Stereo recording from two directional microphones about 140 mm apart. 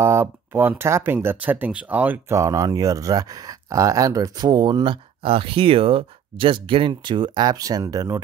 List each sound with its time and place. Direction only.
0.0 s speech: 15° right (ahead or behind)